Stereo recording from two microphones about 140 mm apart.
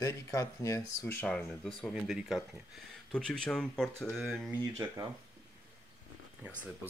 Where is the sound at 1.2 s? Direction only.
5° left (ahead or behind).